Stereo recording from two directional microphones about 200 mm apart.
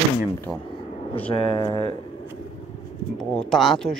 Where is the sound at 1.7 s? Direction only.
25° right (ahead or behind).